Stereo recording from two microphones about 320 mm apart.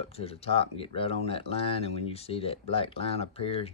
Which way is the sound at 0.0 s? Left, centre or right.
Centre.